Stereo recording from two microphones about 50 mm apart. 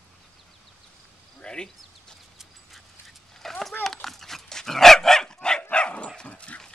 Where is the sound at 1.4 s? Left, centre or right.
Centre.